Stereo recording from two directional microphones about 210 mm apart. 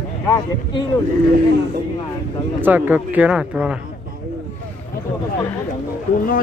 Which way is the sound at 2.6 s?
10° right (ahead or behind).